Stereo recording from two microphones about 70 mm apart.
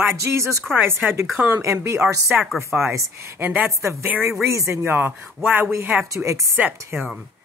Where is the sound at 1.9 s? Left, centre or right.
Right.